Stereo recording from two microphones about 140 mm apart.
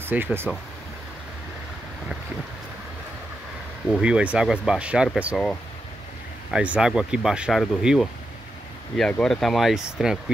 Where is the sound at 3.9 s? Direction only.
5° right (ahead or behind).